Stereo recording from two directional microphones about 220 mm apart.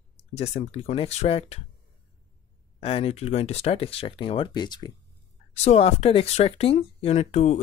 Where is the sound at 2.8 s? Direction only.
25° left (ahead or behind).